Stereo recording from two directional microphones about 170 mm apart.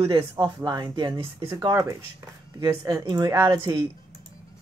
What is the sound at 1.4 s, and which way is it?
A man's voice, 15° right (ahead or behind).